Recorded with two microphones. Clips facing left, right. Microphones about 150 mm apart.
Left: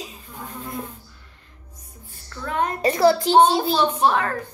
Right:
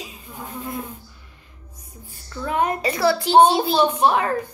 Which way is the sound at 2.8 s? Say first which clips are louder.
Left 3 dB; 40° left (ahead or behind).